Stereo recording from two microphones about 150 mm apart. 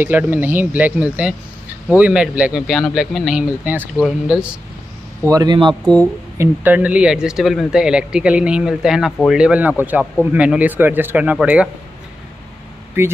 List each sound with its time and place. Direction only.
0.0 s speech: 10° right (ahead or behind)
5.2 s a man's voice: 25° right (ahead or behind)
6.3 s speech: 15° right (ahead or behind)